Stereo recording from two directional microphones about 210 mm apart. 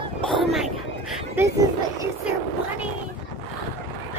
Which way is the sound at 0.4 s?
Centre (ahead or behind).